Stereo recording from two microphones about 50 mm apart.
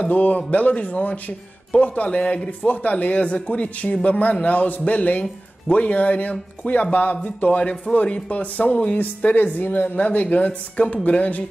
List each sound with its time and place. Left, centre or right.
0.0 s speech: left